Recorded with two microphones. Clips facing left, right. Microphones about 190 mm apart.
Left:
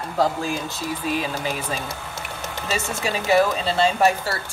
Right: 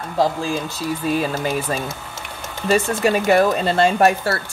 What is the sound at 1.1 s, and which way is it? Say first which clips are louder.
Speech: right 5 dB; 45° right (ahead or behind).